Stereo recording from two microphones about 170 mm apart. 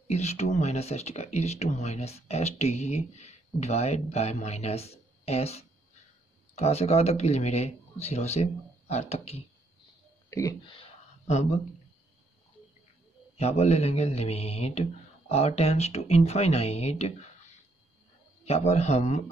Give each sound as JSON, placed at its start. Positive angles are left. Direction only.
{"t": 0.1, "sound": "speech", "side_deg": 40}
{"t": 10.6, "sound": "speech", "side_deg": 30}
{"t": 13.4, "sound": "speech", "side_deg": 40}
{"t": 18.4, "sound": "speech", "side_deg": 40}